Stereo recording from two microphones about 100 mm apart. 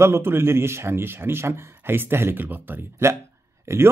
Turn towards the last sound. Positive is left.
turn(degrees=-30)  # may be behind; listen again after turning